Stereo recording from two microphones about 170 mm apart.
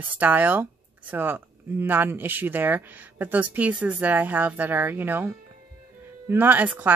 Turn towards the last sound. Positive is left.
turn(degrees=-10)  # may be behind; listen again after turning